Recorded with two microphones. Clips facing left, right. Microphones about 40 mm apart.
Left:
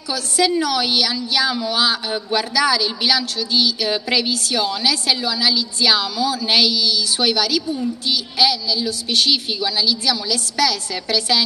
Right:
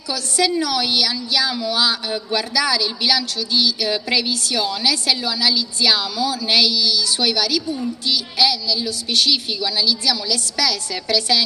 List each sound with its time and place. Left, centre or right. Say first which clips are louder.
0.1 s a woman's voice: left 1 dB; centre
1.5 s a woman's voice: left 1 dB; centre